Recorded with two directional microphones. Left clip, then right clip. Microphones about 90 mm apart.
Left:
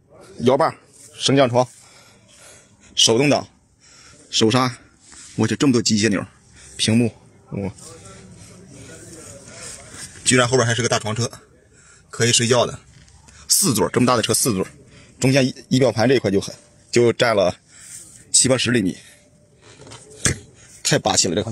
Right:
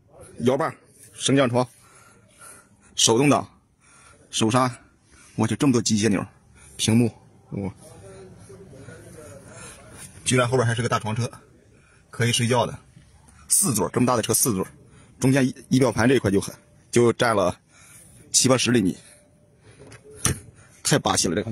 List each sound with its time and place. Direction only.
0.4 s speech: 25° right (ahead or behind)
2.9 s speech: 35° right (ahead or behind)
4.3 s speech: 25° right (ahead or behind)
7.4 s speech: 15° right (ahead or behind)
10.3 s speech: 15° left (ahead or behind)
13.7 s speech: centre (ahead or behind)
14.2 s speech: 15° right (ahead or behind)
15.5 s speech: 40° right (ahead or behind)
18.3 s speech: 50° right (ahead or behind)
20.8 s speech: 40° right (ahead or behind)